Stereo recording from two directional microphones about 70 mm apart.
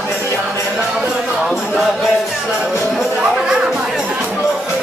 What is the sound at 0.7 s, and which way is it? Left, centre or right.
Music, centre.